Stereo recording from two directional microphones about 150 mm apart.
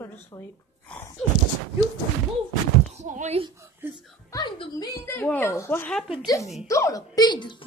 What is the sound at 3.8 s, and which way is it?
Speech, 15° right (ahead or behind).